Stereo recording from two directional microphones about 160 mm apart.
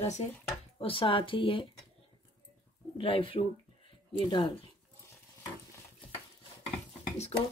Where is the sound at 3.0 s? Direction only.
35° left (ahead or behind).